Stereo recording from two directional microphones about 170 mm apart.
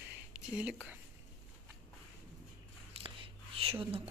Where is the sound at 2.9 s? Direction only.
35° right (ahead or behind).